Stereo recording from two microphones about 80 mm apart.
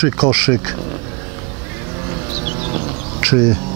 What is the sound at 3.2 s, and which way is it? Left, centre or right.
Speech, centre.